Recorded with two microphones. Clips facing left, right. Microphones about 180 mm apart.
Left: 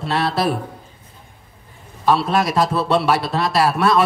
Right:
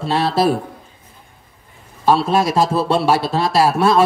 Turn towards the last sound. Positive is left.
turn(degrees=-25)  # may be behind; listen again after turning